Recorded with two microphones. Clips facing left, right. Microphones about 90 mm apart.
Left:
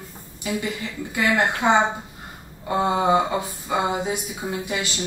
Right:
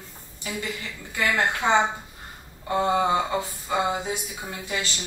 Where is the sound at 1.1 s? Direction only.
15° left (ahead or behind).